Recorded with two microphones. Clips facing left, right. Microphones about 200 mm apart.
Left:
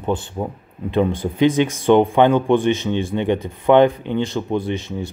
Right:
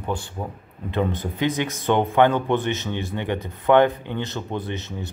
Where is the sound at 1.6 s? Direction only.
20° left (ahead or behind).